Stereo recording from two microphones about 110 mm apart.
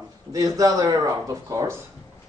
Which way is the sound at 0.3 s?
35° right (ahead or behind).